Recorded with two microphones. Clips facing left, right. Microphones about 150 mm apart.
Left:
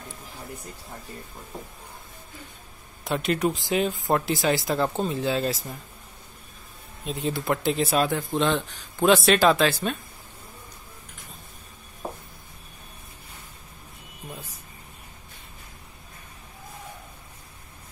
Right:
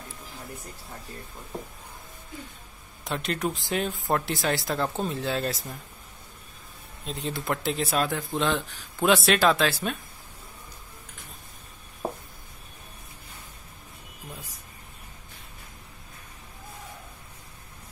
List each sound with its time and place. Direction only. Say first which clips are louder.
3.0 s speech: left 5 dB; centre (ahead or behind)
7.1 s speech: left 4 dB; 5° left (ahead or behind)
12.0 s a sound: right 3 dB; 30° right (ahead or behind)